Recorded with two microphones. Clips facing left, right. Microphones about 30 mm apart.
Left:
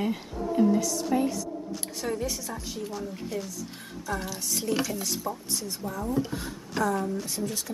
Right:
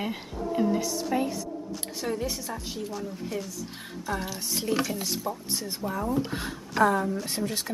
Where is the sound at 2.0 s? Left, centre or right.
Centre.